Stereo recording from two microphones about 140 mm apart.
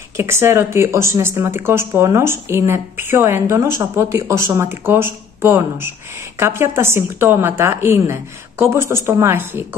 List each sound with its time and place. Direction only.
0.2 s a woman's voice: 20° right (ahead or behind)